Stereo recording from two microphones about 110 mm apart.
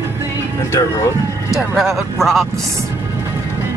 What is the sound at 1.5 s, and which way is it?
Speech, centre (ahead or behind).